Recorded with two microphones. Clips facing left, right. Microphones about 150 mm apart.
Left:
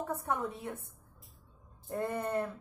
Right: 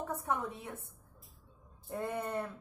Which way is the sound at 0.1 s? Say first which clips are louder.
Left 1 dB; centre (ahead or behind).